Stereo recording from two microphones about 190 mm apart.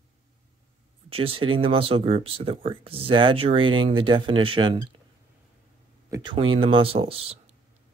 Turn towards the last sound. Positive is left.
turn(degrees=-30)  # may be behind; listen again after turning